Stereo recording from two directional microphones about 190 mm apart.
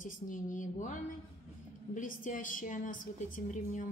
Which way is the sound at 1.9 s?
45° left (ahead or behind).